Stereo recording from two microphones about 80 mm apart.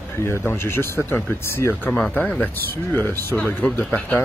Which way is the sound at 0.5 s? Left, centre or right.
Left.